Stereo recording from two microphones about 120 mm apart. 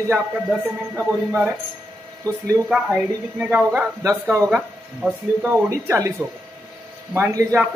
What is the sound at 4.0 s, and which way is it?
Speech, 25° right (ahead or behind).